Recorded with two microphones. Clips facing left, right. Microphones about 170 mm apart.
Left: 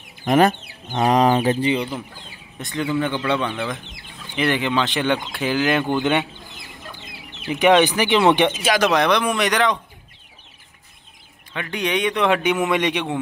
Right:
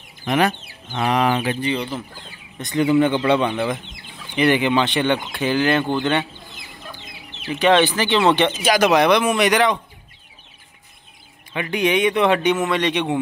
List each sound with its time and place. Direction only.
0.3 s speech: 40° left (ahead or behind)
1.6 s speech: 20° left (ahead or behind)
2.7 s speech: 20° right (ahead or behind)
4.4 s speech: centre (ahead or behind); by 6.2 s 15° left (ahead or behind)
7.4 s speech: 15° left (ahead or behind)
8.5 s speech: centre (ahead or behind)
11.5 s speech: 10° right (ahead or behind)
12.4 s speech: 15° left (ahead or behind)